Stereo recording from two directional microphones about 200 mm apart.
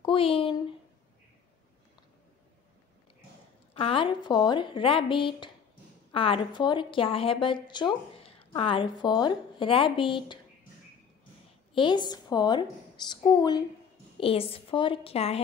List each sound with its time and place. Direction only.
0.0 s speech: 25° left (ahead or behind)
3.7 s a woman's voice: 25° left (ahead or behind)
11.7 s a woman's voice: 25° left (ahead or behind)